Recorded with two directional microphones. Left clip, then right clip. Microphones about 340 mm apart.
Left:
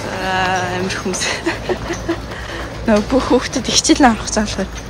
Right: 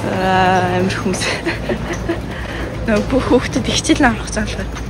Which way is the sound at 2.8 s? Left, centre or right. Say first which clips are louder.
Left 2 dB; centre.